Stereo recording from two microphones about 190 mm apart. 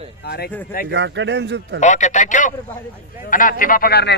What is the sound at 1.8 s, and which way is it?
Speech, 40° left (ahead or behind).